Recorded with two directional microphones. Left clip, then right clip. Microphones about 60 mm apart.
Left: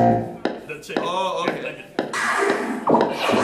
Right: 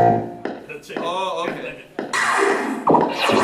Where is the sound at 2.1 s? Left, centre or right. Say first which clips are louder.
Right 3 dB; right.